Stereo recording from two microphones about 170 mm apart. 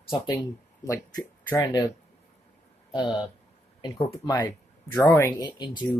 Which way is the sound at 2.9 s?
30° left (ahead or behind).